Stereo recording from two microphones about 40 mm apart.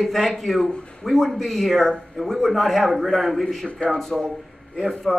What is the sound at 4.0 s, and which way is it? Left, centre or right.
A man's voice, centre.